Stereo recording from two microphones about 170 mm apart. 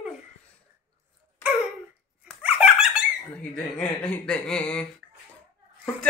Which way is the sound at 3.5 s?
5° left (ahead or behind).